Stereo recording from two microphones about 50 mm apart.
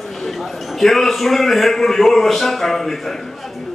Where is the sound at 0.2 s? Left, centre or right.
Centre.